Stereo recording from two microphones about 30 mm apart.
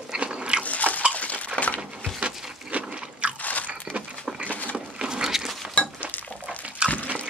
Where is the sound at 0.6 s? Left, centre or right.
Left.